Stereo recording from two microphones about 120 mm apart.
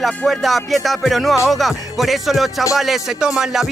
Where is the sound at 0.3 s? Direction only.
Centre (ahead or behind).